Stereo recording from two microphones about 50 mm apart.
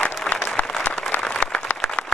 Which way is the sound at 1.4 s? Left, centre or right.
Left.